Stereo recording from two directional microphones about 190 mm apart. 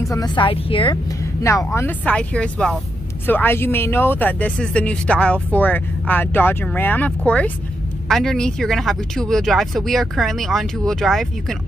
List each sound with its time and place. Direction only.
0.0 s a woman's voice: 20° left (ahead or behind)
1.7 s speech: 10° left (ahead or behind)